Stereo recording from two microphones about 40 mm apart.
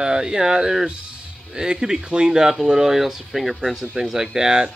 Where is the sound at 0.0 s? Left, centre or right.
Right.